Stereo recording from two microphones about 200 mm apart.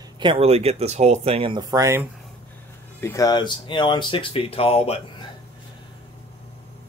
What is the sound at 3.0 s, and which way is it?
Speech, 15° left (ahead or behind).